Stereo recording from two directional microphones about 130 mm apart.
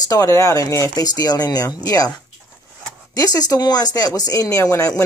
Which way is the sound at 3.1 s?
30° left (ahead or behind).